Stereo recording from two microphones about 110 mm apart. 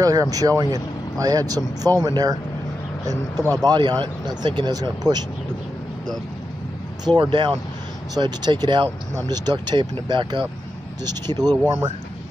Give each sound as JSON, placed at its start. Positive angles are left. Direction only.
{"t": 0.0, "sound": "speech", "side_deg": -35}
{"t": 3.6, "sound": "speech", "side_deg": -40}
{"t": 7.1, "sound": "speech", "side_deg": -50}